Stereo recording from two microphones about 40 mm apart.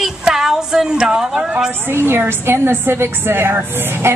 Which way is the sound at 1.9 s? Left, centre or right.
Right.